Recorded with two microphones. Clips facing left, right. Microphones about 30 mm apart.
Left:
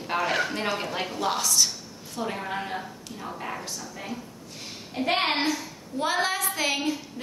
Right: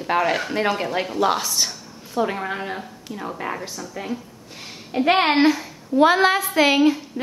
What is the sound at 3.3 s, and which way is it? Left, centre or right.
Speech, right.